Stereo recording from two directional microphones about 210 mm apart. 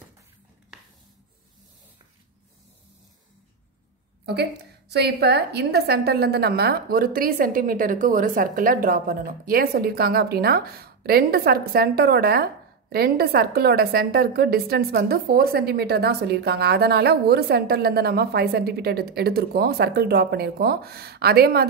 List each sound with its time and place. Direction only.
4.3 s a woman's voice: 50° right (ahead or behind)